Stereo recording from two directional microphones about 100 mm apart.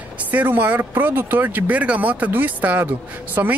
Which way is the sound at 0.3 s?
15° right (ahead or behind).